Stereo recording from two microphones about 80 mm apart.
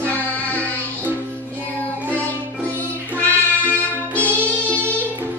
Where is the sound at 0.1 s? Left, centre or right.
Centre.